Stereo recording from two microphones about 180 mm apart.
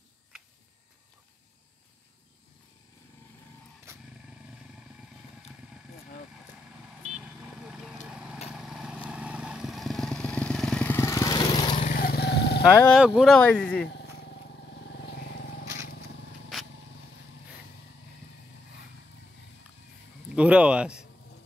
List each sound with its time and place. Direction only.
7.0 s vehicle: 5° right (ahead or behind); by 11.8 s 25° left (ahead or behind)
11.8 s vehicle: 50° left (ahead or behind)
12.8 s speech: centre (ahead or behind)
13.8 s vehicle: 70° left (ahead or behind)
16.5 s vehicle: centre (ahead or behind)
20.3 s speech: 5° right (ahead or behind)